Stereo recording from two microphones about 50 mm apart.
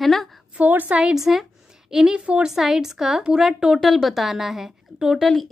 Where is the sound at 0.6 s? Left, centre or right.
Right.